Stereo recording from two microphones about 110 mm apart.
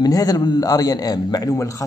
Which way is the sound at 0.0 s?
35° left (ahead or behind).